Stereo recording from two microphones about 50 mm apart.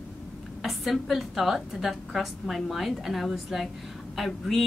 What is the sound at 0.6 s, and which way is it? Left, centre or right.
A woman's voice, centre.